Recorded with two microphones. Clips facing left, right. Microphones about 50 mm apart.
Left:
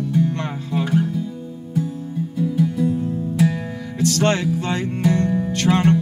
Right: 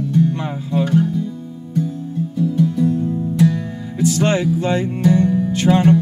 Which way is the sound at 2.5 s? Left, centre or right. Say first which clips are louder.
Right 3 dB; centre.